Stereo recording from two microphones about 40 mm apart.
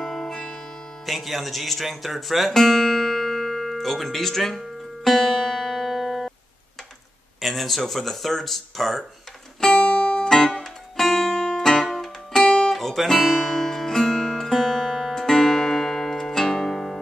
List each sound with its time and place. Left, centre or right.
0.0 s music: centre
1.0 s speech: centre
2.5 s speech: centre
4.6 s music: centre
7.3 s speech: centre
9.8 s music: left
10.3 s music: centre
11.2 s music: centre
12.7 s guitar: centre
15.1 s music: centre